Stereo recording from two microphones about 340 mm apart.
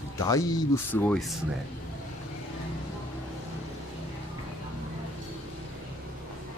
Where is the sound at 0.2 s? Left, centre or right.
Centre.